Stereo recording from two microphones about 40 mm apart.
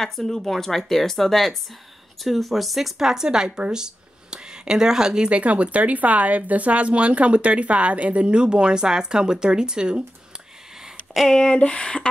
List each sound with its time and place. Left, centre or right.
0.0 s speech: centre
5.3 s speech: right
11.3 s speech: centre